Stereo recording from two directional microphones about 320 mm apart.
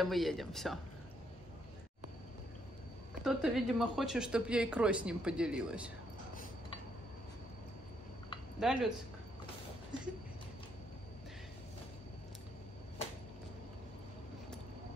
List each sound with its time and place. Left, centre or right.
0.0 s speech: centre
3.3 s speech: centre
6.3 s a sound: left
8.5 s speech: centre